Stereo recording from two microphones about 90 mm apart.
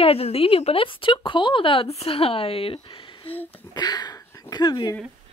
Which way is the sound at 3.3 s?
20° left (ahead or behind).